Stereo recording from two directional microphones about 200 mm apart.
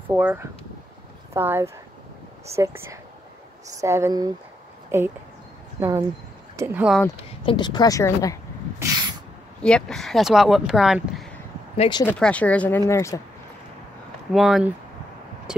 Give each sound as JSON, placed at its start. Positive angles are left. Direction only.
{"t": 0.1, "sound": "speech", "side_deg": -10}
{"t": 7.4, "sound": "speech", "side_deg": 20}
{"t": 8.7, "sound": "a sound", "side_deg": -15}
{"t": 9.6, "sound": "speech", "side_deg": 5}
{"t": 11.7, "sound": "speech", "side_deg": 30}
{"t": 12.0, "sound": "speech", "side_deg": 10}
{"t": 14.3, "sound": "speech", "side_deg": 0}